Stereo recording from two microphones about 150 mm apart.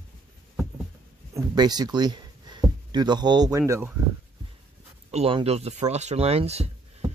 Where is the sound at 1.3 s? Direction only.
25° right (ahead or behind).